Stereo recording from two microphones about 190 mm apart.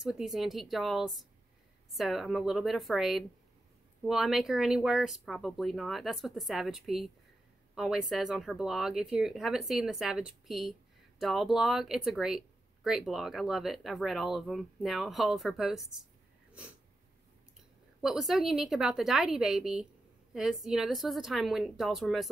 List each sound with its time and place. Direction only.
0.0 s speech: centre (ahead or behind)
18.0 s speech: centre (ahead or behind)